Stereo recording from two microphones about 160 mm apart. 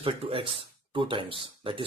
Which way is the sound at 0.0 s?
35° right (ahead or behind).